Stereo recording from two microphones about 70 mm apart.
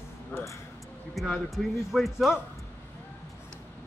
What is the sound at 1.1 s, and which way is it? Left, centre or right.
A man's voice, centre.